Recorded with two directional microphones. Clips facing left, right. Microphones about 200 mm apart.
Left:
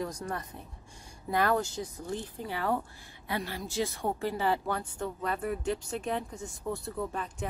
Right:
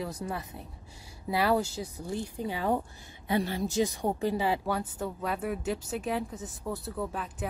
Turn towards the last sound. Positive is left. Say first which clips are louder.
# right 1 dB
turn(degrees=-5)  # may be behind; listen again after turning